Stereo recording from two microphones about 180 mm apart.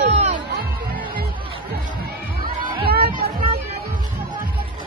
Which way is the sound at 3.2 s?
60° right (ahead or behind).